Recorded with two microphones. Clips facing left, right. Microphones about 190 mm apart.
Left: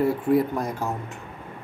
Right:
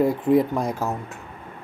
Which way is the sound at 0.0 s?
15° right (ahead or behind).